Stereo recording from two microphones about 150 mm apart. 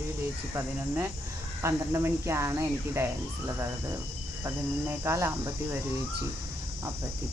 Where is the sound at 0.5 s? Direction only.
15° right (ahead or behind).